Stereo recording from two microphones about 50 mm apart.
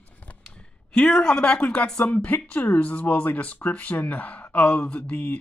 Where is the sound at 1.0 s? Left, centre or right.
Left.